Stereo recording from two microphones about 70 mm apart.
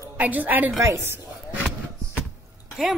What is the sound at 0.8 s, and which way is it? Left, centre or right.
Speech, right.